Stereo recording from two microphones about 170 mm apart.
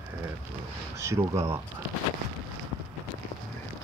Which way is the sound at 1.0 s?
15° right (ahead or behind).